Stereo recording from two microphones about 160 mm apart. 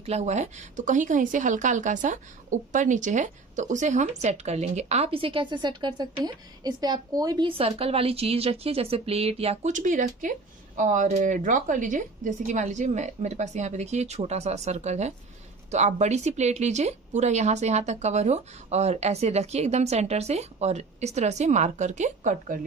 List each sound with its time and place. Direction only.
0.0 s a woman's voice: 45° right (ahead or behind)